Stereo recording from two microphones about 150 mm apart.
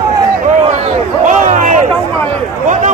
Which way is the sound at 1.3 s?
60° right (ahead or behind).